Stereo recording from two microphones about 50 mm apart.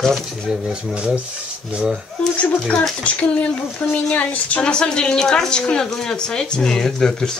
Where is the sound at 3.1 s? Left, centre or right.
Left; by 7.4 s centre.